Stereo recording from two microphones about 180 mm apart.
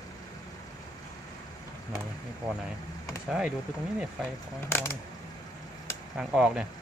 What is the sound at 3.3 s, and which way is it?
Speech, 5° right (ahead or behind).